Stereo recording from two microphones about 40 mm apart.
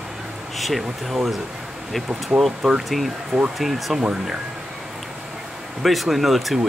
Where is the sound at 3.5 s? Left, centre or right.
Centre.